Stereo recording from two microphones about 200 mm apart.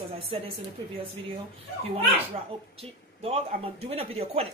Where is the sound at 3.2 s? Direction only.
30° right (ahead or behind).